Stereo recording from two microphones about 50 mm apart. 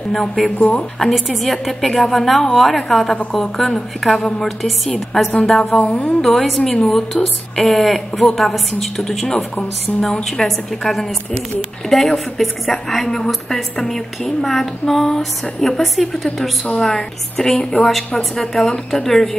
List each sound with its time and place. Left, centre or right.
0.1 s a woman's voice: centre
0.6 s a woman's voice: left
0.9 s a woman's voice: centre; by 6.1 s left
6.2 s a woman's voice: centre